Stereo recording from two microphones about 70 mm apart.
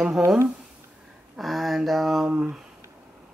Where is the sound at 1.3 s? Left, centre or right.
Centre.